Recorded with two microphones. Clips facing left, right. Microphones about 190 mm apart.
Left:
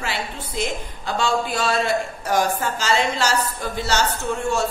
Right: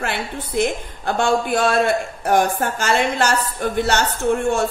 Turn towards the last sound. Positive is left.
turn(degrees=-55)  # may be behind; listen again after turning